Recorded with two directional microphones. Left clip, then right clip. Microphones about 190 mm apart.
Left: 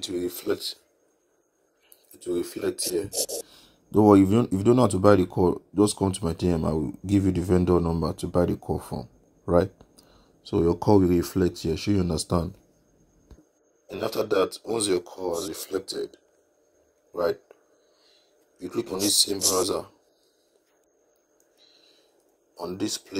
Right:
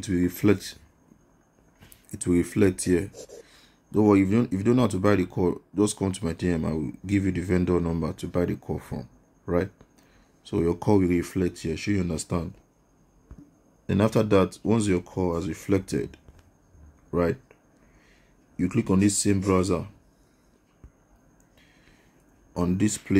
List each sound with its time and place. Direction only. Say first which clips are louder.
0.0 s speech: right 5 dB; 5° left (ahead or behind)
2.2 s speech: right 5 dB; centre (ahead or behind)
14.0 s speech: right 2 dB; 10° left (ahead or behind)
18.8 s speech: left 2 dB; 15° left (ahead or behind)
22.7 s speech: right 2 dB; centre (ahead or behind)